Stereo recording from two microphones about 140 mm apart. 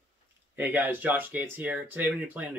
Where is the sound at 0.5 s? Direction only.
10° right (ahead or behind).